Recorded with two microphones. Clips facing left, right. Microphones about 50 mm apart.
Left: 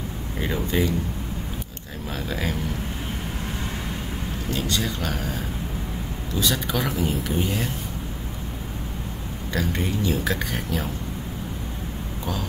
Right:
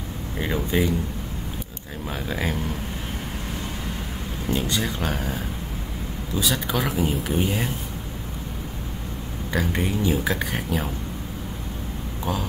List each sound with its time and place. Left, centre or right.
0.4 s speech: centre
2.0 s speech: centre
4.5 s speech: centre
6.4 s speech: centre
9.5 s speech: centre